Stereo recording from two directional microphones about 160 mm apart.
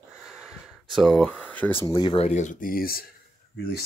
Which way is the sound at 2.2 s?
50° left (ahead or behind).